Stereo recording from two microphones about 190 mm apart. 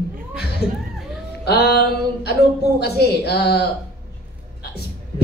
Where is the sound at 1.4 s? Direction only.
60° left (ahead or behind).